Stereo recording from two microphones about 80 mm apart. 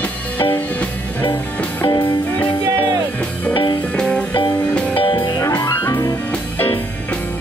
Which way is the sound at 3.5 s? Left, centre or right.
Left.